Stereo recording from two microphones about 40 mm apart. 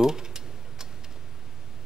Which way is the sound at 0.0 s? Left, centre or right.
Centre.